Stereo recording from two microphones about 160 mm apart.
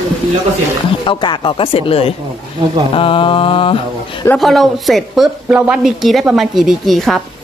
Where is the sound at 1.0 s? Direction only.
30° left (ahead or behind).